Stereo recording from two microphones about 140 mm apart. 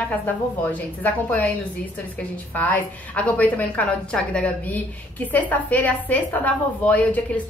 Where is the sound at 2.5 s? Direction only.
10° left (ahead or behind).